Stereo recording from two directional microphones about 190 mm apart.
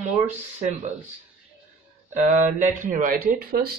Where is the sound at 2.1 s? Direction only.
40° right (ahead or behind).